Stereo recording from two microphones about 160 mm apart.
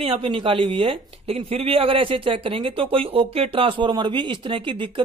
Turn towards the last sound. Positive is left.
turn(degrees=-30)  # may be behind; listen again after turning